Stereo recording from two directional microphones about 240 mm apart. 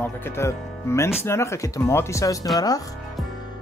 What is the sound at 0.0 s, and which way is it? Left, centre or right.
Speech, centre.